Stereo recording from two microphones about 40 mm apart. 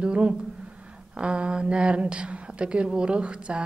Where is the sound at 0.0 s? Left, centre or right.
Right.